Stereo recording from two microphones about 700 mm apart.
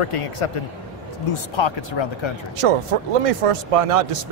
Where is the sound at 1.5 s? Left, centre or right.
Left.